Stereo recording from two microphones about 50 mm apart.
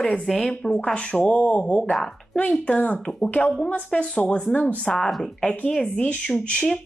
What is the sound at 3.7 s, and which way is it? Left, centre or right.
A woman's voice, left.